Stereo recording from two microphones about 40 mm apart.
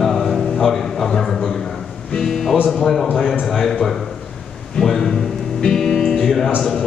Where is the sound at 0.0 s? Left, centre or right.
Centre.